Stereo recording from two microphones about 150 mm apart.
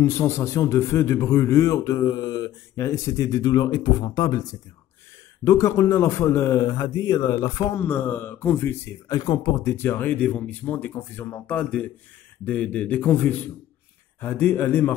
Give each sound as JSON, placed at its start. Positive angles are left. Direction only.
{"t": 0.0, "sound": "a man's voice", "side_deg": 15}
{"t": 7.7, "sound": "speech", "side_deg": 15}
{"t": 9.1, "sound": "speech", "side_deg": 25}